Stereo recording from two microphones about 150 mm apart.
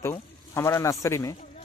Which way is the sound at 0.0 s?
20° left (ahead or behind).